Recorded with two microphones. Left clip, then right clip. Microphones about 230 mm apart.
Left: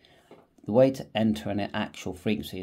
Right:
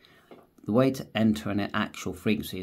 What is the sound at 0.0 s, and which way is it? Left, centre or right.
Speech, centre.